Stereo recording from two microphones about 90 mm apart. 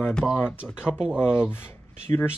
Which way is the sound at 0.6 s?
5° right (ahead or behind).